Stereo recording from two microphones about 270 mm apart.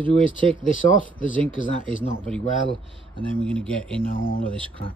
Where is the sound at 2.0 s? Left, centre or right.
Centre.